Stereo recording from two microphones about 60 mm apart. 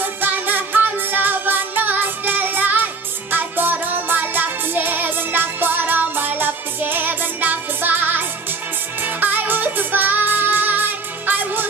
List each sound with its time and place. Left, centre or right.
0.0 s music: right